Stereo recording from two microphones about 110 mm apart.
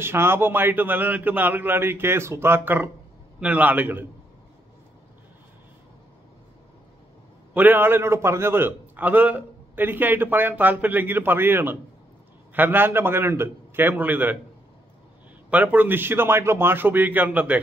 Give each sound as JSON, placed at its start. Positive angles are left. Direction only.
{"t": 0.0, "sound": "a man's voice", "side_deg": -20}
{"t": 7.5, "sound": "a man's voice", "side_deg": -15}
{"t": 15.5, "sound": "a man's voice", "side_deg": -15}